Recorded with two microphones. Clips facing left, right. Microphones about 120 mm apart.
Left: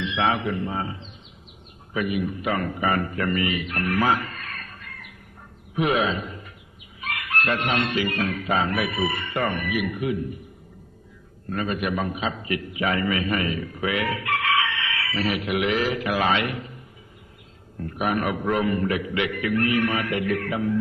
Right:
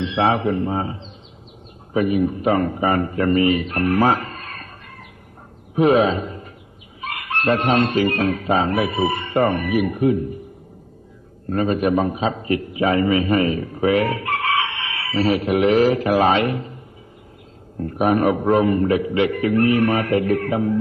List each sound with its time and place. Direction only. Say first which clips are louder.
0.0 s chicken: right 5 dB; 35° right (ahead or behind)
2.0 s a man's voice: right 7 dB; 35° right (ahead or behind)
7.0 s chicken: right 2 dB; 30° right (ahead or behind)
11.5 s a man's voice: right 8 dB; 35° right (ahead or behind)
17.7 s chicken: right 7 dB; 35° right (ahead or behind)